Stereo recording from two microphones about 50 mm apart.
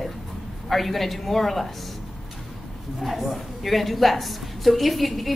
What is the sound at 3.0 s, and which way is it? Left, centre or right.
A woman's voice, centre.